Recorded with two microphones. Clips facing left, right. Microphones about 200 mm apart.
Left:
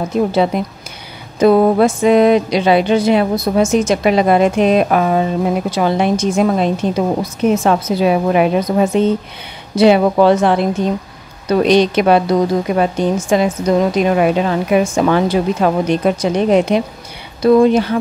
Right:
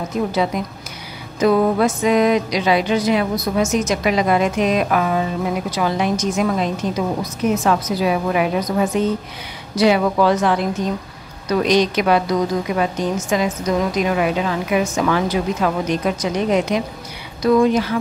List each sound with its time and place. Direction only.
0.5 s music: 30° left (ahead or behind)
11.4 s a woman's voice: 30° left (ahead or behind)
17.4 s music: 30° left (ahead or behind)